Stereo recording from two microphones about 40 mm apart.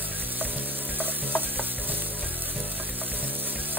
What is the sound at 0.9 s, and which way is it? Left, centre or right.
Stir, left.